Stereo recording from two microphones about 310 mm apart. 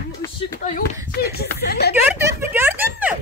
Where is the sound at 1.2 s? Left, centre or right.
Left.